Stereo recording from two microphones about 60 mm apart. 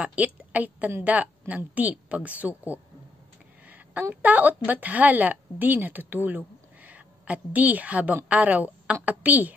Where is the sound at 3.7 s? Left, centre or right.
Right.